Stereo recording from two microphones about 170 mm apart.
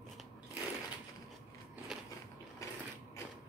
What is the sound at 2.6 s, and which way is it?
Sewing machine, 20° left (ahead or behind).